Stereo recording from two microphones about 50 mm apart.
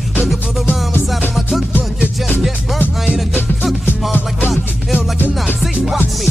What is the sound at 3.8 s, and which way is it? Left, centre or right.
Music, left.